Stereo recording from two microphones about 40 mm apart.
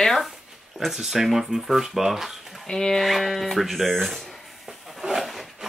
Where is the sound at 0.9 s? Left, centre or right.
Centre.